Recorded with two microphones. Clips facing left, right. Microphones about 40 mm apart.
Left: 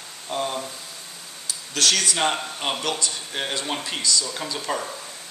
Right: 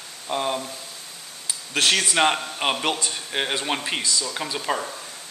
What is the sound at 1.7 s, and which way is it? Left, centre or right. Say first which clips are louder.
Speech: right 1 dB; right.